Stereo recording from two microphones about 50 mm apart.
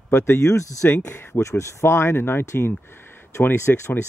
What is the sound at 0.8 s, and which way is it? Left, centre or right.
Speech, left.